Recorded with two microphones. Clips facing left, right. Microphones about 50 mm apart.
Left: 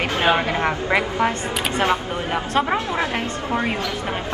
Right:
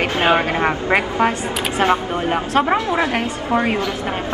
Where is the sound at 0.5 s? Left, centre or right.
Right.